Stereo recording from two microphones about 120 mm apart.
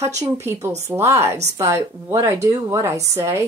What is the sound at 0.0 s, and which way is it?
Speech, 30° right (ahead or behind).